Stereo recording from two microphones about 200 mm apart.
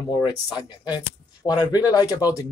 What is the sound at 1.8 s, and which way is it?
Speech, 20° left (ahead or behind).